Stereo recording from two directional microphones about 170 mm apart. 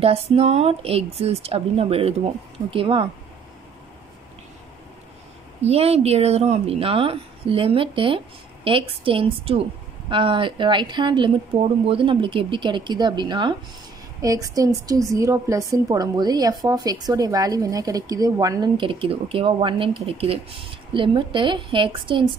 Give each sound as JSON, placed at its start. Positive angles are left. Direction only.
{"t": 0.0, "sound": "speech", "side_deg": -35}
{"t": 5.6, "sound": "a woman's voice", "side_deg": -40}